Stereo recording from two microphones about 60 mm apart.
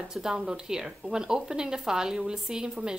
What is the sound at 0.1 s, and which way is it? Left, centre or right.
A woman's voice, centre.